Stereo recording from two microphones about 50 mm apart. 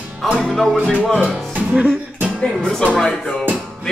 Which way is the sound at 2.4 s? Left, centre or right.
Centre.